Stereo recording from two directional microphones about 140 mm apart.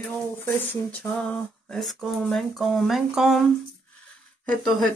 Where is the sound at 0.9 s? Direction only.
10° left (ahead or behind).